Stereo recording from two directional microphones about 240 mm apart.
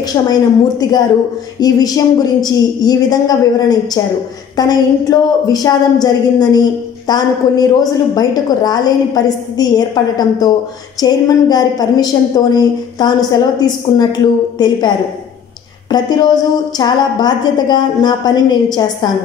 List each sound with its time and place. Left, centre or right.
0.0 s a woman's voice: centre